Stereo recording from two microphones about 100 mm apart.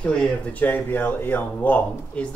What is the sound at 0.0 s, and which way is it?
Speech, 10° left (ahead or behind).